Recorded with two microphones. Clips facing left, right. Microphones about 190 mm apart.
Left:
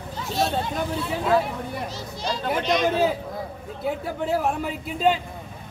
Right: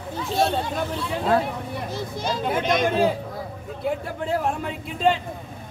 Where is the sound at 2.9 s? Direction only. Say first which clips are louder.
Right 1 dB; 5° left (ahead or behind).